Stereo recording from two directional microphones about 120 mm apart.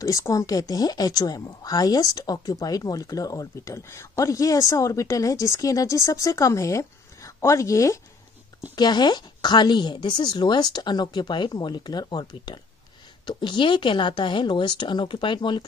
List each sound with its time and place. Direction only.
0.0 s a woman's voice: 25° left (ahead or behind)
8.7 s a woman's voice: 35° left (ahead or behind)